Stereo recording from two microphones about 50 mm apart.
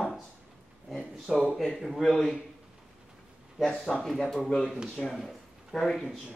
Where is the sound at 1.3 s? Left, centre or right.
Centre.